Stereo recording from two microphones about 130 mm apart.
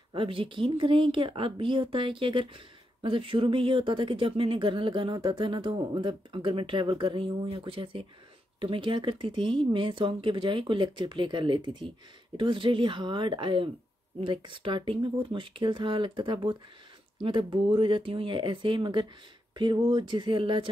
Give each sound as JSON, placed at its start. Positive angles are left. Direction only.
{"t": 0.1, "sound": "speech", "side_deg": -40}